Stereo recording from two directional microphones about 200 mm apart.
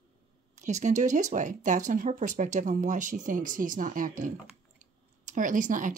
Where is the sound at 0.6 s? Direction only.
35° right (ahead or behind).